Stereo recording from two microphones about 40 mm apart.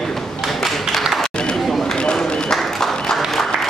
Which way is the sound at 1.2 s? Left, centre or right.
Left.